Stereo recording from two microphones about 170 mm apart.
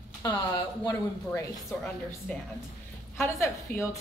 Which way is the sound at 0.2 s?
25° left (ahead or behind).